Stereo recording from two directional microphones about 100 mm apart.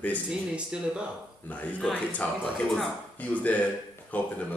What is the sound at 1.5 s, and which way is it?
Speech, 15° left (ahead or behind).